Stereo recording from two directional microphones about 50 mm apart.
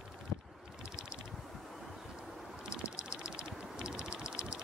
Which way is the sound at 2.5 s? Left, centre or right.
Centre.